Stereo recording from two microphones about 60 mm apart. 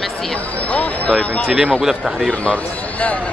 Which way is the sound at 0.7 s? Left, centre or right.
Left.